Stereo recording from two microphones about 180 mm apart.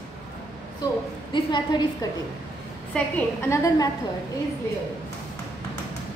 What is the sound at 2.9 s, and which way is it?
Speech, 10° left (ahead or behind).